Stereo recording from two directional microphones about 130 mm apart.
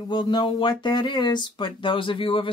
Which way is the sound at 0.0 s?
35° left (ahead or behind).